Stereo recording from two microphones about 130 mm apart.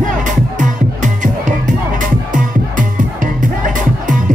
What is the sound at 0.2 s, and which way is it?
Music, 80° right.